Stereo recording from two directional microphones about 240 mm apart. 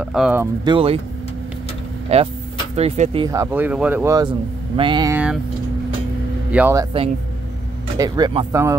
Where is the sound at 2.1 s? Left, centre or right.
Right.